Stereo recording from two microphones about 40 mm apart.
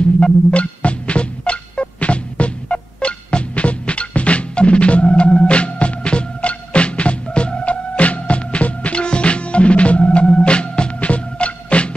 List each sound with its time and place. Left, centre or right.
0.2 s music: left